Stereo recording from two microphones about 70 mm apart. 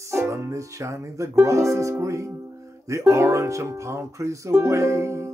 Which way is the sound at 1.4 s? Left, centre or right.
Right.